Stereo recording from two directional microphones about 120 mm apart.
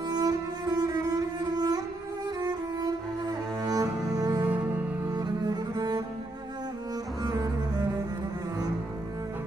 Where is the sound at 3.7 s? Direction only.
30° right (ahead or behind).